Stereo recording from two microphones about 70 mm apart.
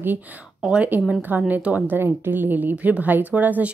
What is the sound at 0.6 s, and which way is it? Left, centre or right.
A woman's voice, centre.